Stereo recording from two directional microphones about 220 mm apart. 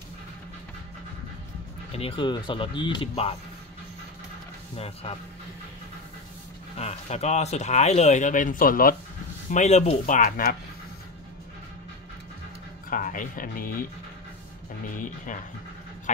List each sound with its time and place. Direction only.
2.0 s speech: 25° left (ahead or behind)
4.7 s speech: 25° left (ahead or behind)
6.8 s speech: 30° left (ahead or behind)
12.9 s speech: 35° left (ahead or behind)
14.9 s speech: 35° left (ahead or behind)